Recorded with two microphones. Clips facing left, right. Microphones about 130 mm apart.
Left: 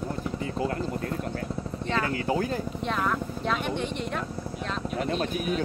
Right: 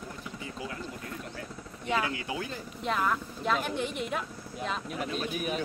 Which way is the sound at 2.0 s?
45° left (ahead or behind).